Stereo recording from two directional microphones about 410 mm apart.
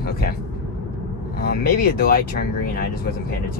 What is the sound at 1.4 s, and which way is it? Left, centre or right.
Speech, left.